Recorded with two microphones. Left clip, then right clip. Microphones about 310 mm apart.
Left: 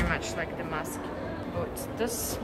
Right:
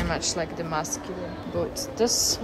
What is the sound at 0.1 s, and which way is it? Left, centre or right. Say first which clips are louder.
Speech: right 3 dB; centre.